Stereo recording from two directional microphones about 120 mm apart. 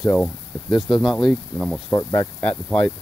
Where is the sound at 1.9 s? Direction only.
25° left (ahead or behind).